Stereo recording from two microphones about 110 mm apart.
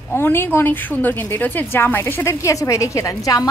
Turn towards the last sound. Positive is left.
turn(degrees=30)  # may be behind; listen again after turning